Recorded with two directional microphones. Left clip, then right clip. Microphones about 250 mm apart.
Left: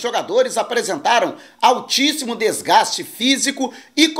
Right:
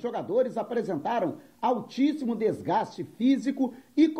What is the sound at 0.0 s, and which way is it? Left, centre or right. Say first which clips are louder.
Speech: left 9 dB; centre.